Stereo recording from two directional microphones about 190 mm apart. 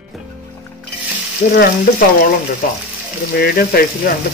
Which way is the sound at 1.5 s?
50° left (ahead or behind).